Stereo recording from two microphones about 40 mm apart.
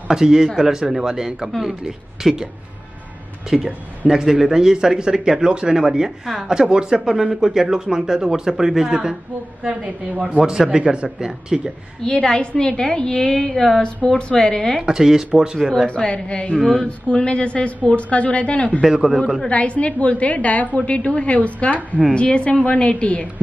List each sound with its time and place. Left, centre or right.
0.1 s speech: centre
3.4 s speech: centre
9.7 s a woman's voice: right
10.4 s a woman's voice: centre
12.1 s a woman's voice: left
14.8 s speech: centre
15.9 s a woman's voice: left
18.8 s speech: centre
19.5 s a woman's voice: left